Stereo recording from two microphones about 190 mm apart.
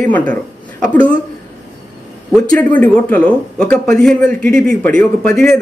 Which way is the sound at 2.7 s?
5° left (ahead or behind).